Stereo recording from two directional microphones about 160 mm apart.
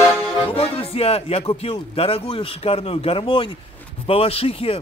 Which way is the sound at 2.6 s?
35° left (ahead or behind).